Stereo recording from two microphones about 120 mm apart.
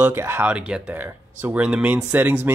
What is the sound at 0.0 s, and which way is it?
Speech, 20° right (ahead or behind).